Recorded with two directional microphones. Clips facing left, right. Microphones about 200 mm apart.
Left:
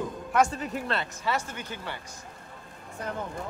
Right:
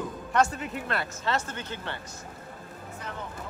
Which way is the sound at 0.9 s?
30° left (ahead or behind).